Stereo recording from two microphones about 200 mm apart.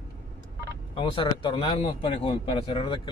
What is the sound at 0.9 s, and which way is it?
Speech, 25° left (ahead or behind).